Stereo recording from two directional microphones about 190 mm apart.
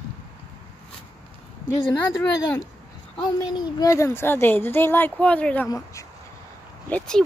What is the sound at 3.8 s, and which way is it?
Speech, 15° left (ahead or behind).